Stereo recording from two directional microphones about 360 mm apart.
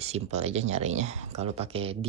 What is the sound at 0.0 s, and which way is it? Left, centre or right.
Speech, centre.